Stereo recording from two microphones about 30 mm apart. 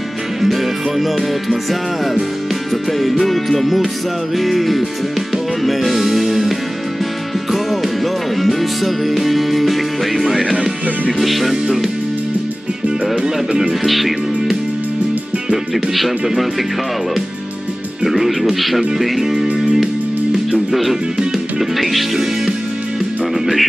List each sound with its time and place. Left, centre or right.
0.4 s music: centre
7.5 s music: centre
10.2 s speech: centre
11.1 s music: centre
13.1 s speech: right
13.8 s music: centre
18.0 s speech: centre
20.5 s speech: centre
21.5 s music: centre
23.4 s speech: centre